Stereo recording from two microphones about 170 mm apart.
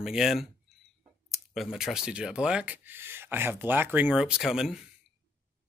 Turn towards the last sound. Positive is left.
turn(degrees=-5)  # may be behind; listen again after turning